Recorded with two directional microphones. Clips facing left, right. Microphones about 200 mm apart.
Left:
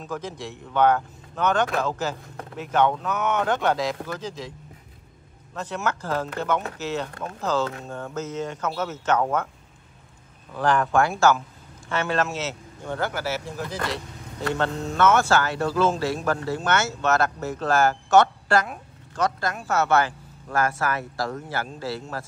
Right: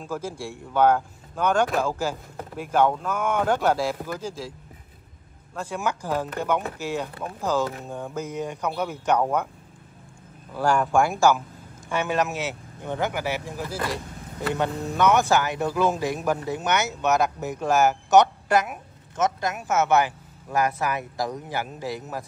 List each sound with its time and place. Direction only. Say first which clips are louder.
0.0 s speech: right 1 dB; 10° right (ahead or behind)
10.5 s speech: even; 10° right (ahead or behind)